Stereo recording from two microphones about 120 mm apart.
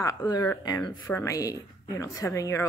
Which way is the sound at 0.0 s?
30° left (ahead or behind).